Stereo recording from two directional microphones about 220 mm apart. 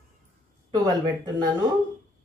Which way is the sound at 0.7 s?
20° right (ahead or behind).